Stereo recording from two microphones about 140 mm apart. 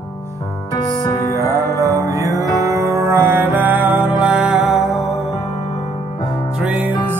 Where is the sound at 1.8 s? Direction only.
25° right (ahead or behind); by 5.3 s centre (ahead or behind).